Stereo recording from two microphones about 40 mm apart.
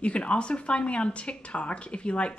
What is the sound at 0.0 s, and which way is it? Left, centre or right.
Speech, left.